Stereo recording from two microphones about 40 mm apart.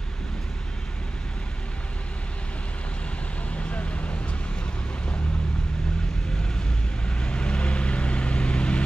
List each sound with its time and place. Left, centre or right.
3.5 s vehicle: left
7.1 s vehicle: left